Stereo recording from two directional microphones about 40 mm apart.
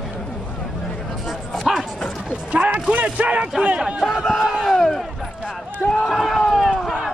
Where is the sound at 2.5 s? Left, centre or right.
Right.